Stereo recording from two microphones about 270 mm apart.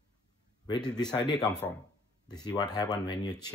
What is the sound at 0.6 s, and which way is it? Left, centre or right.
Speech, centre.